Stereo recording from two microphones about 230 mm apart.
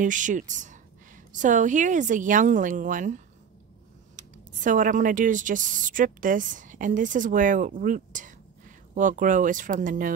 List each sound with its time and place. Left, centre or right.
0.0 s a woman's voice: right
4.5 s a woman's voice: right